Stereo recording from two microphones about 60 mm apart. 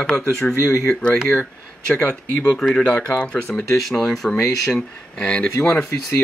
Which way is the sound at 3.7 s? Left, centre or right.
Centre.